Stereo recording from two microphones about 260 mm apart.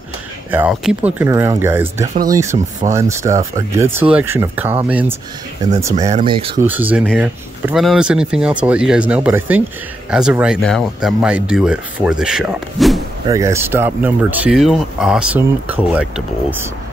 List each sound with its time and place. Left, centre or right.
0.5 s speech: centre
6.6 s speech: centre
13.3 s speech: centre